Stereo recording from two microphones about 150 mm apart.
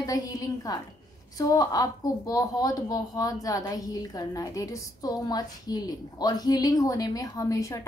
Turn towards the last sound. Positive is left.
turn(degrees=20)  # may be behind; listen again after turning